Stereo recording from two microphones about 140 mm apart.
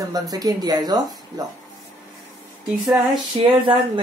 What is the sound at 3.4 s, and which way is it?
Speech, 35° right (ahead or behind).